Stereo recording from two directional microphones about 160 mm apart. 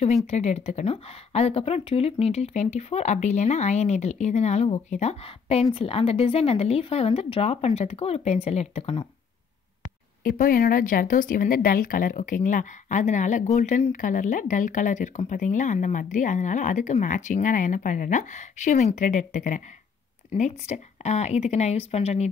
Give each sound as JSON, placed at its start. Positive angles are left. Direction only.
{"t": 0.0, "sound": "speech", "side_deg": 45}
{"t": 10.2, "sound": "speech", "side_deg": 65}